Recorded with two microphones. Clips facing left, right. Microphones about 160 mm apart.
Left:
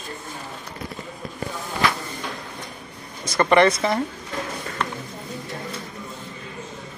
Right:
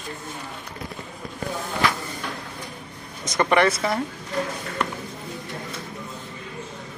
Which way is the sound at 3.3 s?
10° right (ahead or behind).